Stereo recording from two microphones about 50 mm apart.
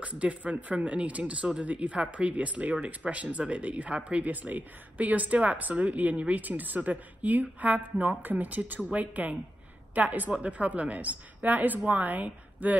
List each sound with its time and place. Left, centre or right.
0.0 s speech: right